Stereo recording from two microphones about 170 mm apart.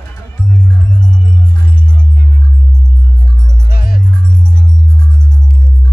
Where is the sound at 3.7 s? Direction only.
60° left (ahead or behind).